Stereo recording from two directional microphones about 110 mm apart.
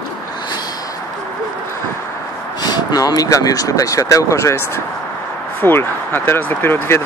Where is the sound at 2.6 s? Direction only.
35° left (ahead or behind).